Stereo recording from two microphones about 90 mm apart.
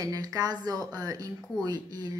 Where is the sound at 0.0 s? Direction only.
40° right (ahead or behind).